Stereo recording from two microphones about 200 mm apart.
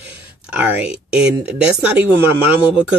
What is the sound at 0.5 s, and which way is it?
Speech, 5° right (ahead or behind).